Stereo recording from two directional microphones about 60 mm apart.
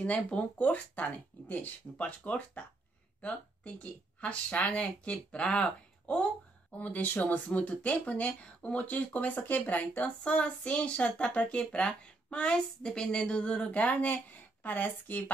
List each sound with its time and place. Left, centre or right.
0.0 s speech: left